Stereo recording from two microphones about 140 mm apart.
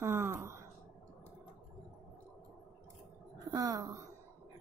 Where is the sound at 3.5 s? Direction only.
25° right (ahead or behind).